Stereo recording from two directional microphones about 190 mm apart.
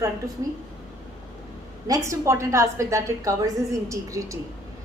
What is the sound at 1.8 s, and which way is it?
A woman's voice, 15° right (ahead or behind).